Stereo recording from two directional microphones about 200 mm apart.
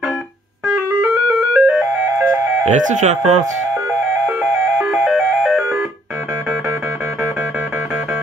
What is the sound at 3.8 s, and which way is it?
Music, 10° right (ahead or behind).